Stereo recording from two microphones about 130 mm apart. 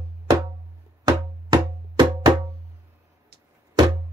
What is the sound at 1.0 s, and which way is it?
Music, 35° right (ahead or behind).